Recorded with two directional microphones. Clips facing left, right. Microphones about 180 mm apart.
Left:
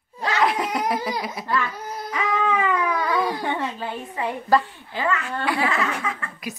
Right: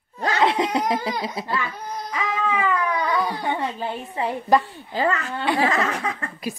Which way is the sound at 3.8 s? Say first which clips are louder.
Right 2 dB; 25° right (ahead or behind).